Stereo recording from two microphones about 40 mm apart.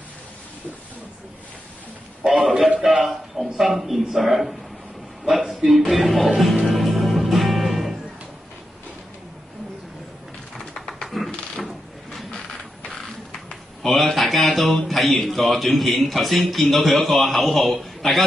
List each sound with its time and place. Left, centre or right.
2.2 s a man's voice: centre
5.3 s music: centre
10.5 s a sound: centre
14.9 s a man's voice: centre